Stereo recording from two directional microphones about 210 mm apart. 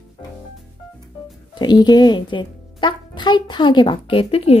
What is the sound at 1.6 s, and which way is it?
A woman's voice, 20° left (ahead or behind).